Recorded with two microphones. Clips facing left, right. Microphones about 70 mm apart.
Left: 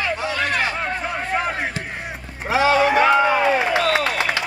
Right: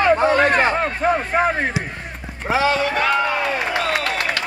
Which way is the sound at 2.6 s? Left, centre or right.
Centre.